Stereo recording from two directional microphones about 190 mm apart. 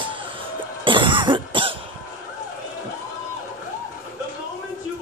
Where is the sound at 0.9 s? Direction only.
25° right (ahead or behind).